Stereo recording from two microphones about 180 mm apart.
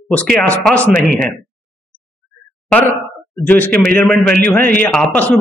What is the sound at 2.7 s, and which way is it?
A man's voice, 10° left (ahead or behind).